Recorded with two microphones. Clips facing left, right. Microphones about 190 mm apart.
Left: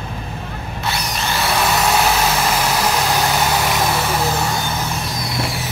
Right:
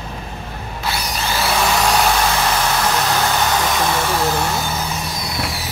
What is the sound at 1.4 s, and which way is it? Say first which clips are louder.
Vehicle: even; centre (ahead or behind).